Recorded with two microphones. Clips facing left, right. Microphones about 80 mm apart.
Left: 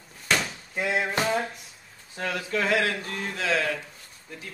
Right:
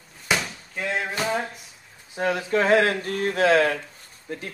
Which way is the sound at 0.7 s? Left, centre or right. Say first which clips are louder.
Left 1 dB; centre.